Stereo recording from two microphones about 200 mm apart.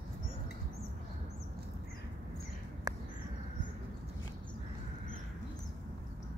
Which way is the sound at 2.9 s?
20° right (ahead or behind).